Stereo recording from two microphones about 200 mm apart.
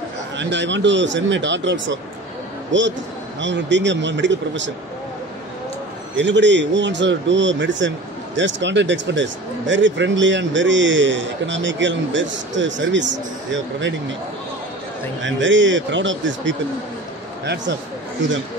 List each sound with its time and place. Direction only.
0.4 s speech: 65° right (ahead or behind)
6.1 s speech: 65° right (ahead or behind)
15.2 s speech: 70° right (ahead or behind)